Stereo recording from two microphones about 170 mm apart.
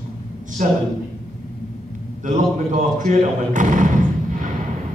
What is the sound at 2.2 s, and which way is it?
Speech, 50° right (ahead or behind).